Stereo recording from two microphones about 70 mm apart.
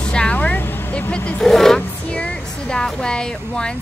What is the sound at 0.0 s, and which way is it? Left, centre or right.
Vehicle, centre.